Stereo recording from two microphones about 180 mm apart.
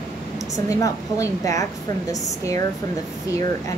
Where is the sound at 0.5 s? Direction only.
20° left (ahead or behind).